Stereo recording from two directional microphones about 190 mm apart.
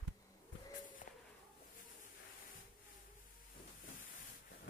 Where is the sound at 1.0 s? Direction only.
40° left (ahead or behind).